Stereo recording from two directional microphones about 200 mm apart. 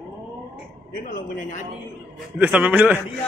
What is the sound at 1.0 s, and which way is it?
Speech, 45° left (ahead or behind).